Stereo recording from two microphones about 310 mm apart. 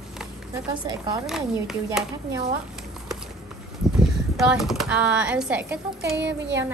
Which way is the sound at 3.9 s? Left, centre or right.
Centre.